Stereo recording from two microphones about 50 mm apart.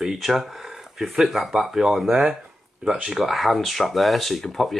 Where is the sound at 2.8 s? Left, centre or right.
Centre.